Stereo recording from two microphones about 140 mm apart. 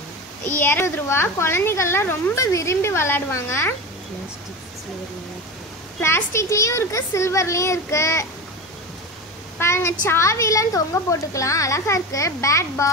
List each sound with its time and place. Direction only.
0.5 s speech: 15° left (ahead or behind)
5.9 s a woman's voice: 15° left (ahead or behind)
9.6 s a woman's voice: 20° left (ahead or behind)